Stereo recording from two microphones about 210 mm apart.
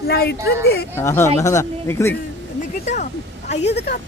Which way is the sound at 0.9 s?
15° left (ahead or behind).